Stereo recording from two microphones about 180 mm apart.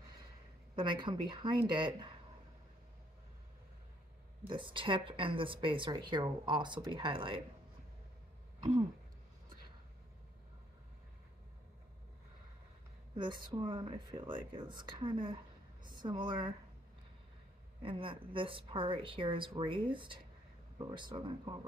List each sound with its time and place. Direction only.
0.7 s a woman's voice: 25° right (ahead or behind)
4.5 s a woman's voice: 25° right (ahead or behind)
13.1 s a woman's voice: 25° right (ahead or behind)
17.8 s a woman's voice: 30° right (ahead or behind)